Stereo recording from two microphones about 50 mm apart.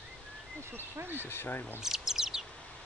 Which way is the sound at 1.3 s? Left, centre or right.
Left.